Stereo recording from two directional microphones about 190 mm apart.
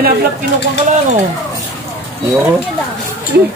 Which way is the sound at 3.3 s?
60° right (ahead or behind).